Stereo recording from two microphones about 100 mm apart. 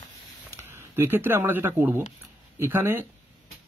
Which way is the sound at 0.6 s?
25° right (ahead or behind).